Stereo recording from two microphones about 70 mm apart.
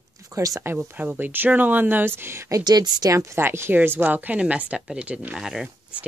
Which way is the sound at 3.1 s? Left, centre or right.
Right.